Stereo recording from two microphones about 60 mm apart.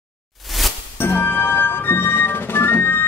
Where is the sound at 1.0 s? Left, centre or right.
Left.